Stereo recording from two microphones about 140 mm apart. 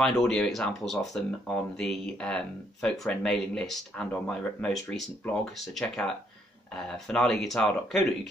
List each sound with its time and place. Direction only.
0.0 s speech: 5° left (ahead or behind)